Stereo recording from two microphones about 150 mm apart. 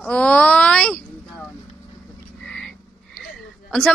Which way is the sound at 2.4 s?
5° left (ahead or behind).